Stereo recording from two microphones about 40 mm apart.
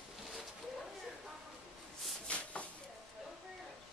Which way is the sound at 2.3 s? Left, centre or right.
Left.